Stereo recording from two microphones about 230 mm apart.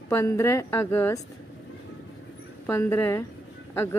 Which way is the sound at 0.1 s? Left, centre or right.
Centre.